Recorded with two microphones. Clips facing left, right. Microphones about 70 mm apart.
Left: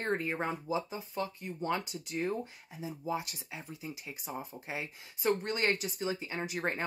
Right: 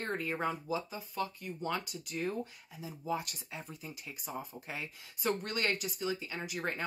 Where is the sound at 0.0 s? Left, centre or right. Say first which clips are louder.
Left 2 dB; left.